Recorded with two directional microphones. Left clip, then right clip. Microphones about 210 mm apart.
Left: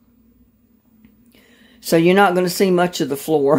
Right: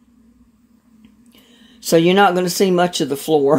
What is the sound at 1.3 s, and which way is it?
Speech, 5° left (ahead or behind).